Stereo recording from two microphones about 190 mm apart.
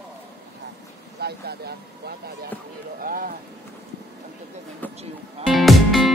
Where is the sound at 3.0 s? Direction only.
50° right (ahead or behind).